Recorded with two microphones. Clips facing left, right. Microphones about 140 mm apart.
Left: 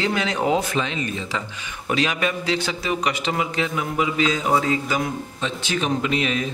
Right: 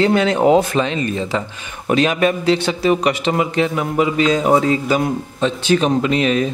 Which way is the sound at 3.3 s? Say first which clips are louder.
Right 7 dB; 40° right (ahead or behind).